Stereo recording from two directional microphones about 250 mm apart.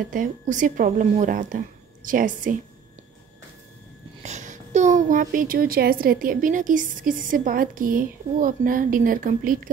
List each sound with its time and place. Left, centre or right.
0.1 s a child's voice: right
4.2 s a child's voice: right